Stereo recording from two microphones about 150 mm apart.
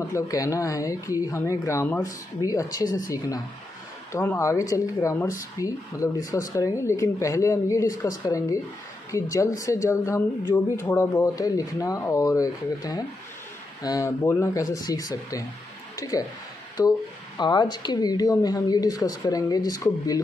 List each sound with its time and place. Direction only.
0.1 s speech: 20° left (ahead or behind)
11.2 s speech: 25° left (ahead or behind)